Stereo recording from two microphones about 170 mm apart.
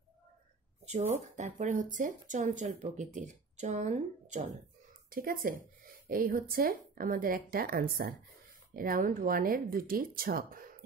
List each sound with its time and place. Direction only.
1.2 s speech: 45° right (ahead or behind)
5.1 s a woman's voice: 55° right (ahead or behind)